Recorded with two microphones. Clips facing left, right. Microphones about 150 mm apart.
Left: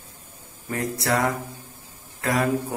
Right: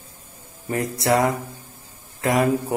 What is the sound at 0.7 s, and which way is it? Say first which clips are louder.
Speech: right 4 dB; 20° right (ahead or behind).